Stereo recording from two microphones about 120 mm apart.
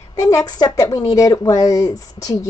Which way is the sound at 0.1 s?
30° left (ahead or behind).